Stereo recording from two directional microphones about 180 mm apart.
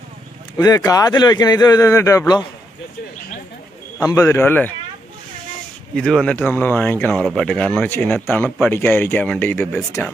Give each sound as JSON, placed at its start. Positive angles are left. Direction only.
{"t": 0.6, "sound": "speech", "side_deg": 20}
{"t": 4.0, "sound": "speech", "side_deg": 15}
{"t": 5.9, "sound": "speech", "side_deg": 5}